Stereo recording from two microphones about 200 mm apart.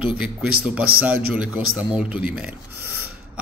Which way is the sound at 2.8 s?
90° right.